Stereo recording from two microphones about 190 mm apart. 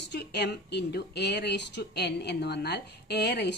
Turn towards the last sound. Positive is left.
turn(degrees=60)  # may be behind; listen again after turning